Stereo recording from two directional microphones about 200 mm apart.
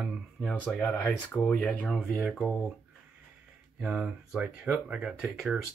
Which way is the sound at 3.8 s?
5° right (ahead or behind).